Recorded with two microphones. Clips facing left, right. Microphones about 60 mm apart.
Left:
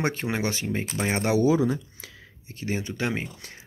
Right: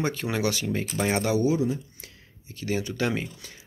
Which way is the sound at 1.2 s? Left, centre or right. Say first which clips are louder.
Left 6 dB; left.